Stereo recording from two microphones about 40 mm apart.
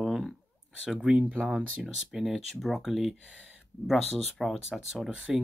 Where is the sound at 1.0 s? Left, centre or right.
Right; by 4.6 s centre.